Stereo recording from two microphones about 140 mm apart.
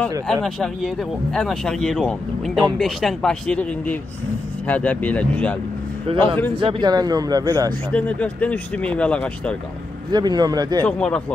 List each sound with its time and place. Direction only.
0.3 s speech: 5° left (ahead or behind)
6.0 s a man's voice: 35° right (ahead or behind)
7.9 s speech: 10° left (ahead or behind)
10.1 s speech: 30° right (ahead or behind)
10.9 s speech: 10° left (ahead or behind)